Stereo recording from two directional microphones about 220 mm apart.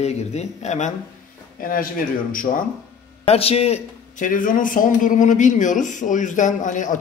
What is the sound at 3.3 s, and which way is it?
A man's voice, 25° left (ahead or behind).